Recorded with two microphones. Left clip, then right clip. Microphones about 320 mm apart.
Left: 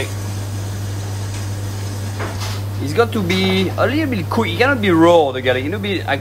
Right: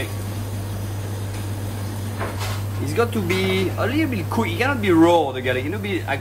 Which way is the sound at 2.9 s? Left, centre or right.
Left.